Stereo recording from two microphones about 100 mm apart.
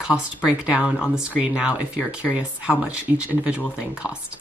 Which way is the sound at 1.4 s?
15° right (ahead or behind).